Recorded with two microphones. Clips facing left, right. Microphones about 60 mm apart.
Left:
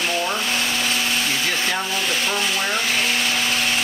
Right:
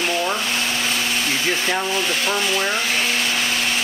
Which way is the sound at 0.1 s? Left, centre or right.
Centre.